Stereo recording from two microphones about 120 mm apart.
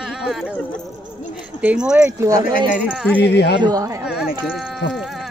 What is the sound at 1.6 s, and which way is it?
Speech, 10° right (ahead or behind).